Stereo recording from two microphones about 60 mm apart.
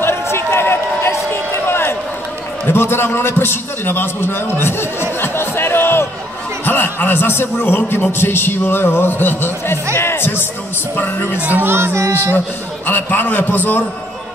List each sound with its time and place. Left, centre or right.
0.0 s run: left
2.6 s a man's voice: left
5.2 s music: left
6.6 s a man's voice: left
11.3 s speech: right
11.7 s speech: right
12.8 s a man's voice: left